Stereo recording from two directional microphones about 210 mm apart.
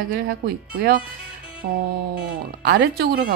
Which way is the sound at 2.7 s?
50° right (ahead or behind).